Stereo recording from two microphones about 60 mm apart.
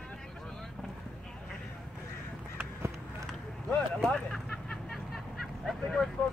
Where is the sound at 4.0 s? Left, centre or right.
Centre.